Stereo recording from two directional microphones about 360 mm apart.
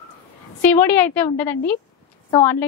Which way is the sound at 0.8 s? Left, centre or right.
Centre.